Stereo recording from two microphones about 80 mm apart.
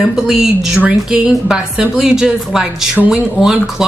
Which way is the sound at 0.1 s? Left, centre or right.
Centre.